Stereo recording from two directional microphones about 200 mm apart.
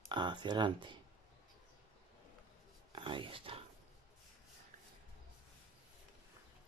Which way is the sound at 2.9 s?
25° right (ahead or behind).